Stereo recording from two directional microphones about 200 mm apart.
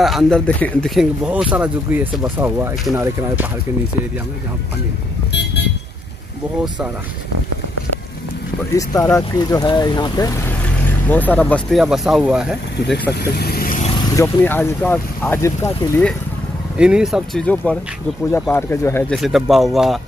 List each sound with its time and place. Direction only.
0.0 s speech: centre (ahead or behind)
8.7 s speech: 15° left (ahead or behind); by 12.9 s 5° right (ahead or behind)
13.3 s vehicle: 50° left (ahead or behind)
13.8 s speech: 20° left (ahead or behind)
16.7 s speech: 5° right (ahead or behind); by 19.1 s 10° left (ahead or behind)
19.1 s speech: centre (ahead or behind)